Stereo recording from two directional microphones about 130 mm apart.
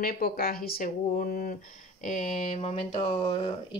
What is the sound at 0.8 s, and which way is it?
Speech, 90° left.